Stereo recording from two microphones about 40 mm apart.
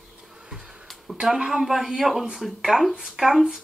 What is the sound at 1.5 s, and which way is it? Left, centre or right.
Speech, centre.